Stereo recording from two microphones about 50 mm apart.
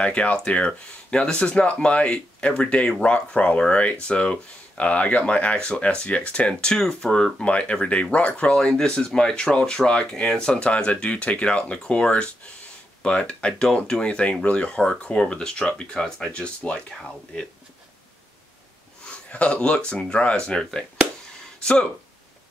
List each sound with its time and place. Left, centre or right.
0.0 s speech: left
19.0 s speech: left